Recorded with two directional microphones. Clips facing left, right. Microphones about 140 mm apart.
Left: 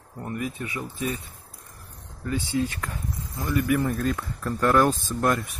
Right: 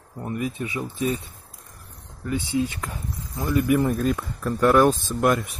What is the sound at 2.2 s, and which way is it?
Speech, 20° right (ahead or behind).